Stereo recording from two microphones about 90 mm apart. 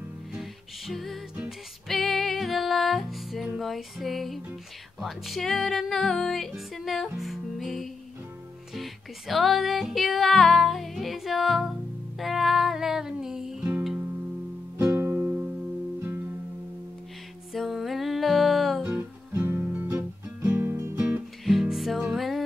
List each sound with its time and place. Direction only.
0.3 s music: centre (ahead or behind)
14.8 s music: 30° right (ahead or behind)
17.5 s music: centre (ahead or behind)
18.9 s music: 15° right (ahead or behind)
20.7 s music: 35° right (ahead or behind)
21.5 s music: centre (ahead or behind)